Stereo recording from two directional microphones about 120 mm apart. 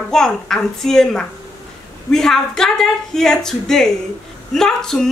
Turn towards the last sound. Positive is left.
turn(degrees=5)  # may be behind; listen again after turning